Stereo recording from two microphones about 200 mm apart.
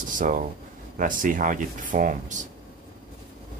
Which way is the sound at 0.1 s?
40° right (ahead or behind).